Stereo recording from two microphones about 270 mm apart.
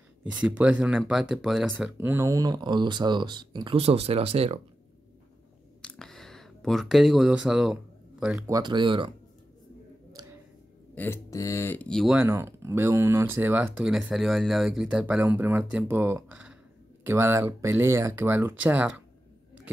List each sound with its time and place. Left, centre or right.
0.2 s speech: centre; by 4.6 s right
5.8 s speech: centre
10.2 s music: centre
11.0 s speech: centre